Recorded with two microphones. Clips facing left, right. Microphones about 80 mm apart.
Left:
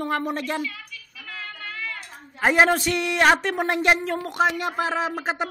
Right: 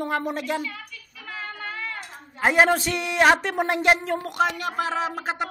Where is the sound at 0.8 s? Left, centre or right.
Right.